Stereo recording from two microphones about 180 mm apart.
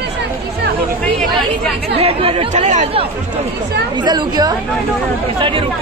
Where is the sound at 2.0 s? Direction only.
30° right (ahead or behind).